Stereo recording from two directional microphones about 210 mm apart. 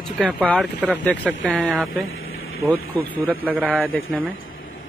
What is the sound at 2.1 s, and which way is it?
Vehicle, 70° left (ahead or behind).